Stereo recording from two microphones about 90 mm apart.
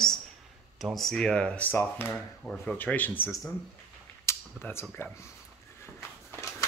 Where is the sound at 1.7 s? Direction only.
25° left (ahead or behind).